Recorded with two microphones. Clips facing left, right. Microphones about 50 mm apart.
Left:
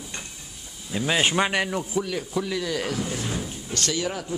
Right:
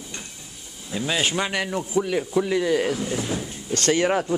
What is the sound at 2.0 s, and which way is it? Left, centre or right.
Speech, centre.